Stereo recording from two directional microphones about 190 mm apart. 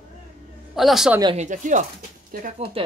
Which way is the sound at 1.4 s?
40° right (ahead or behind).